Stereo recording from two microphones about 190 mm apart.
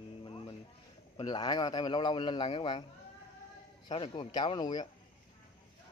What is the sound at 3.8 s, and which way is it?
A man's voice, 25° left (ahead or behind).